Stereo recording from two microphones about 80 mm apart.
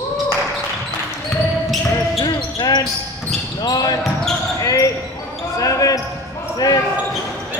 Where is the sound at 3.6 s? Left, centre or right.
Left.